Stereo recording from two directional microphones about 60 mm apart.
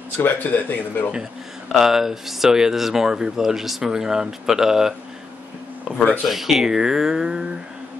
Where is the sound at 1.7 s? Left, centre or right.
Centre.